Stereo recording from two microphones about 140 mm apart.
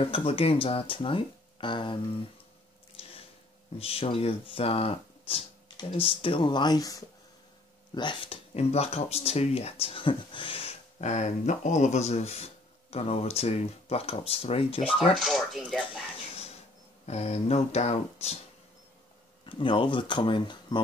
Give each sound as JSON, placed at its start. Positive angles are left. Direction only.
{"t": 0.0, "sound": "speech", "side_deg": 45}
{"t": 3.7, "sound": "speech", "side_deg": 45}
{"t": 15.1, "sound": "speech", "side_deg": 0}
{"t": 17.0, "sound": "speech", "side_deg": 50}
{"t": 19.4, "sound": "speech", "side_deg": 40}